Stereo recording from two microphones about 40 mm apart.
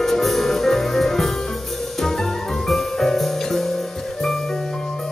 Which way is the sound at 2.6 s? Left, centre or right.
Centre.